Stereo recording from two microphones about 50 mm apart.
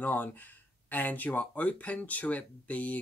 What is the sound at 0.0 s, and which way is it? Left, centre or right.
Speech, left.